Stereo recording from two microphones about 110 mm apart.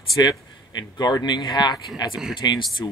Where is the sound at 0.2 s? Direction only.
40° left (ahead or behind).